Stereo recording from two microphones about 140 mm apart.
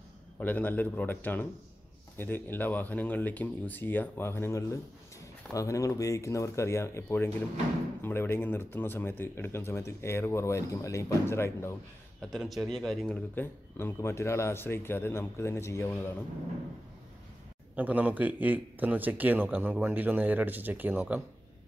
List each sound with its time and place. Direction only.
0.4 s speech: 10° left (ahead or behind)
12.2 s speech: centre (ahead or behind)
13.3 s speech: 15° left (ahead or behind)
17.7 s speech: 10° right (ahead or behind)